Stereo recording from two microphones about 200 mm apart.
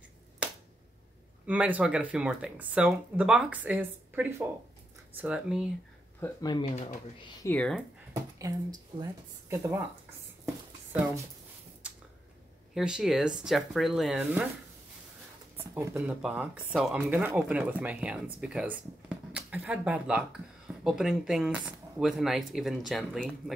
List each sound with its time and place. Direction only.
1.4 s speech: 5° right (ahead or behind)
6.2 s speech: 20° left (ahead or behind)
6.6 s speech: 35° left (ahead or behind)
7.4 s speech: 5° left (ahead or behind)
8.1 s a sound: 15° right (ahead or behind)
9.5 s speech: 15° right (ahead or behind)
11.8 s a sound: 5° right (ahead or behind)
12.7 s speech: centre (ahead or behind)
15.7 s speech: 5° right (ahead or behind)